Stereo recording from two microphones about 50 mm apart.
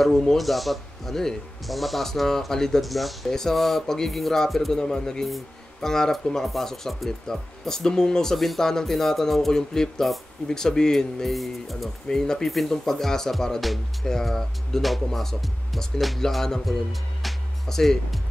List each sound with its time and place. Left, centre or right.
0.0 s a man's voice: centre
12.1 s a man's voice: centre
17.2 s music: centre